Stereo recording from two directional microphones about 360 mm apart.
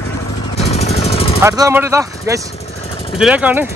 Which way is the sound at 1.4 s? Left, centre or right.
Centre.